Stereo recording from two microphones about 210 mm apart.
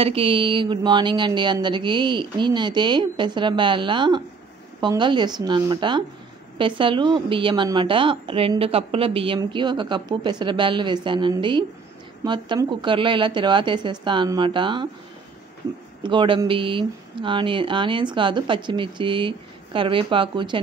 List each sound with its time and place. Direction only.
0.0 s speech: 25° right (ahead or behind)
16.0 s speech: 25° right (ahead or behind)